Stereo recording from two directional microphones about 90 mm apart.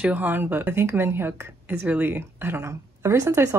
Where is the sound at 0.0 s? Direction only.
20° right (ahead or behind).